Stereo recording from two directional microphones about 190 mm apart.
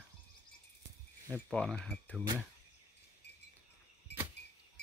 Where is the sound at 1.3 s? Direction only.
5° left (ahead or behind).